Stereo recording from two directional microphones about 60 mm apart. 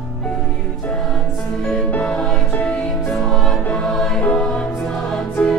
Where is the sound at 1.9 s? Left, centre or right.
Centre.